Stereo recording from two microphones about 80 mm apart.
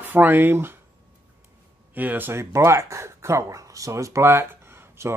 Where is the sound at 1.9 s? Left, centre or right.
Right.